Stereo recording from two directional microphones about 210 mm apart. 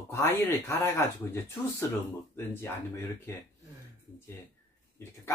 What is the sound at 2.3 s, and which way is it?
Speech, 10° left (ahead or behind).